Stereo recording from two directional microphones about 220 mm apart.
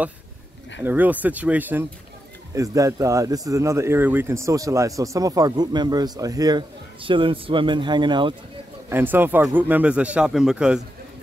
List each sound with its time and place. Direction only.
0.8 s speech: 10° right (ahead or behind)
8.8 s speech: 10° right (ahead or behind)